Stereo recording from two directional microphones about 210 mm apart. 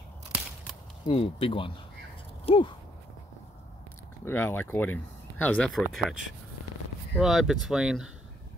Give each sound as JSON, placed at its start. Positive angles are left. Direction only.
{"t": 1.0, "sound": "speech", "side_deg": 25}
{"t": 4.2, "sound": "speech", "side_deg": 10}
{"t": 7.2, "sound": "speech", "side_deg": 0}